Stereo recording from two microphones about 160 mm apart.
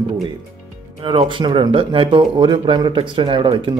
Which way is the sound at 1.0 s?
30° right (ahead or behind).